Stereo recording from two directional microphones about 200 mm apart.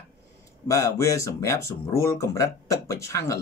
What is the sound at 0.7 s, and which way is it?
Speech, 15° left (ahead or behind).